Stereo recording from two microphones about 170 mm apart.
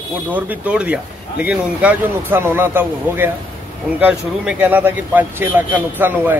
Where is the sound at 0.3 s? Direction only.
10° right (ahead or behind).